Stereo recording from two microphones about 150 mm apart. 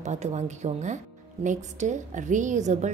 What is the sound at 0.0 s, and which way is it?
A woman's voice, 50° right (ahead or behind).